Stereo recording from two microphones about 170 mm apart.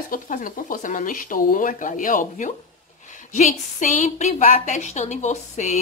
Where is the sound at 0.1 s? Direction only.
55° left (ahead or behind).